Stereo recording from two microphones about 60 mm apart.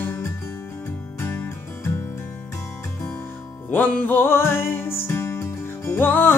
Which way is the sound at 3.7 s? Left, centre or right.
Left.